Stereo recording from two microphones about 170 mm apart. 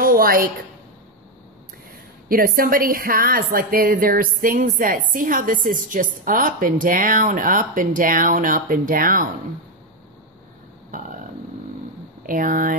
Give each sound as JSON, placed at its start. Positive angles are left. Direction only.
{"t": 0.0, "sound": "a sound", "side_deg": -60}
{"t": 2.2, "sound": "a woman's voice", "side_deg": -60}
{"t": 10.9, "sound": "burping", "side_deg": -50}
{"t": 12.2, "sound": "speech", "side_deg": -55}